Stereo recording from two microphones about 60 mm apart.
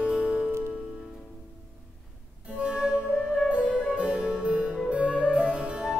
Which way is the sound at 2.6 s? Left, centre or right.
Centre.